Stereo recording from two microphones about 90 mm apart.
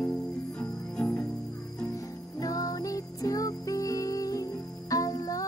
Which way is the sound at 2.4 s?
40° left (ahead or behind).